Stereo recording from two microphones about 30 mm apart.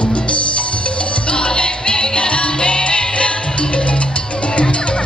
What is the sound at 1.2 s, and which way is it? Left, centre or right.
Music, left.